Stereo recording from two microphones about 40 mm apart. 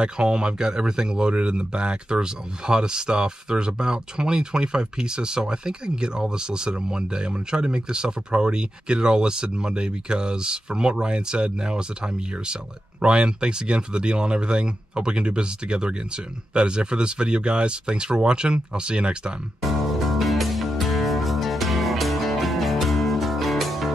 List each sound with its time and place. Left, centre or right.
0.0 s speech: right
19.6 s music: centre